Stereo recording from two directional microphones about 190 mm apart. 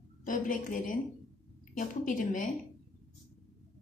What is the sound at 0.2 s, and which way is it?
A woman's voice, 45° left (ahead or behind).